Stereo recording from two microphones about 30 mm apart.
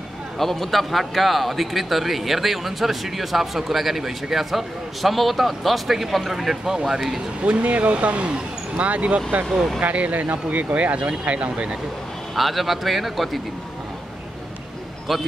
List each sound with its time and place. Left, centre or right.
0.4 s a man's voice: centre
7.4 s speech: right
10.7 s speech: right
12.4 s a man's voice: centre